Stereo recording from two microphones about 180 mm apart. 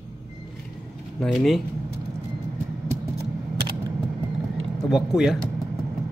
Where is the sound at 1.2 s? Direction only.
Centre (ahead or behind).